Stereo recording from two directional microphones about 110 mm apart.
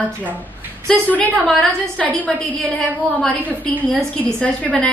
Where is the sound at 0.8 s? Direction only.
15° left (ahead or behind).